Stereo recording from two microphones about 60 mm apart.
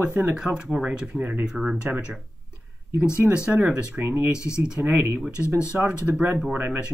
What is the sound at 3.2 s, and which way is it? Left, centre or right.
Speech, centre.